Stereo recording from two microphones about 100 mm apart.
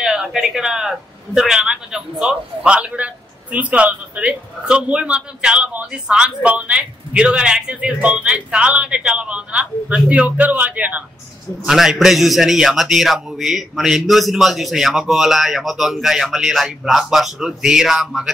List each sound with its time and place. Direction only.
0.0 s a man's voice: 5° right (ahead or behind)
11.6 s a man's voice: 5° right (ahead or behind)